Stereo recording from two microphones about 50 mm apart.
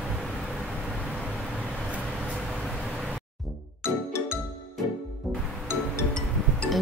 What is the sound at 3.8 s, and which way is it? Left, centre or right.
Music, left.